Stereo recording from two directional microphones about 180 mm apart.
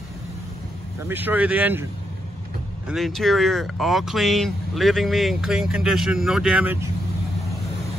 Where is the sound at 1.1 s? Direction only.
10° right (ahead or behind).